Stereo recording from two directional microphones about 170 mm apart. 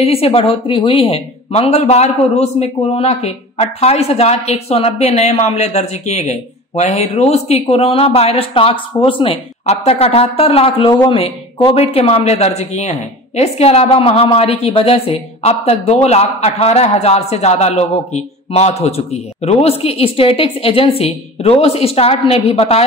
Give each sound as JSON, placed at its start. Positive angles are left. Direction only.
{"t": 0.0, "sound": "speech", "side_deg": 35}